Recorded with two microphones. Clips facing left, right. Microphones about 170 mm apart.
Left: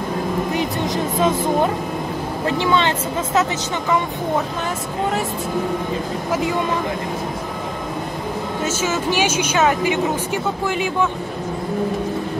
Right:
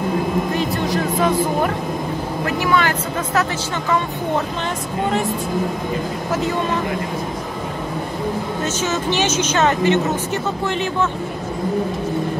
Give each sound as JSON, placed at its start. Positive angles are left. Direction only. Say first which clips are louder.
{"t": 0.6, "sound": "speech", "louder": "right 1 dB", "side_deg": 20}
{"t": 8.6, "sound": "speech", "louder": "left 1 dB", "side_deg": 10}